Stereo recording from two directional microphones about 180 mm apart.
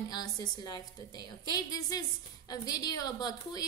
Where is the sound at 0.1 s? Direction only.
20° left (ahead or behind).